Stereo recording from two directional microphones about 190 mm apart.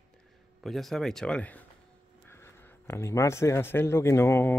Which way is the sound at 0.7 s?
Centre (ahead or behind).